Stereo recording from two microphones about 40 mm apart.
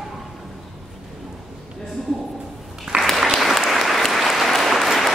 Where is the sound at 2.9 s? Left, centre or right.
Right.